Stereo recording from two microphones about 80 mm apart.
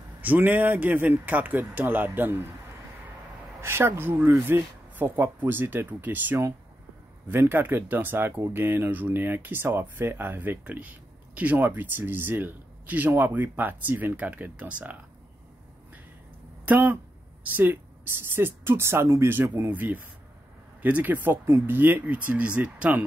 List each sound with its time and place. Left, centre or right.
0.2 s speech: right
3.6 s speech: right; by 15.0 s centre
16.6 s speech: right